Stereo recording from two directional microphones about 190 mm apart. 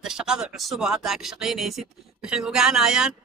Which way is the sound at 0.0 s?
5° right (ahead or behind).